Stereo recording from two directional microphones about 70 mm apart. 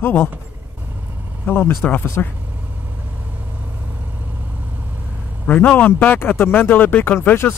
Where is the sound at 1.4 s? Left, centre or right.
Left.